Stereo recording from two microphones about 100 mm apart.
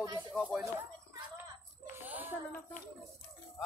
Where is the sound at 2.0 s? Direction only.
15° right (ahead or behind).